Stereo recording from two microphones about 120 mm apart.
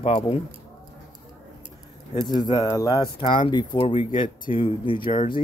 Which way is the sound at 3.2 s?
40° left (ahead or behind).